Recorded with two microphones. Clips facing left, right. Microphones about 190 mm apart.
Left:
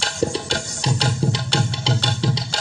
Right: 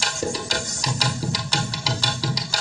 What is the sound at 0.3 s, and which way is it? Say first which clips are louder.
Music: left 2 dB; 30° left (ahead or behind).